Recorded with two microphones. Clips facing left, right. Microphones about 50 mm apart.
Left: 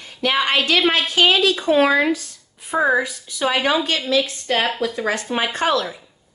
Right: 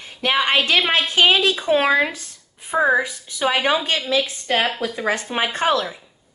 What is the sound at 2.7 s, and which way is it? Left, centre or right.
Speech, centre.